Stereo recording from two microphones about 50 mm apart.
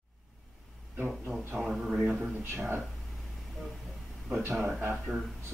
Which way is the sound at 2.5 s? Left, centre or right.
Right.